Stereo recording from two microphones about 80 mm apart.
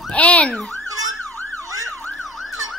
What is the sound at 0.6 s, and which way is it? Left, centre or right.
Ambulance, centre.